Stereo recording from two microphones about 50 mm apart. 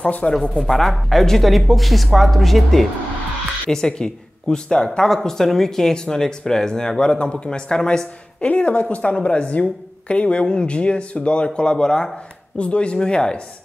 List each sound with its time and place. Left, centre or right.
0.0 s a woman's voice: left
0.3 s speech: centre
3.7 s speech: centre
8.5 s a woman's voice: left